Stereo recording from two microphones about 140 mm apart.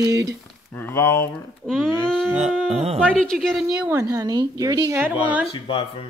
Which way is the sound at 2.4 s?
50° right (ahead or behind).